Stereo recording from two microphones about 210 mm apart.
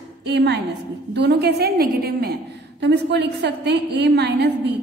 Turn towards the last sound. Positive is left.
turn(degrees=-55)  # may be behind; listen again after turning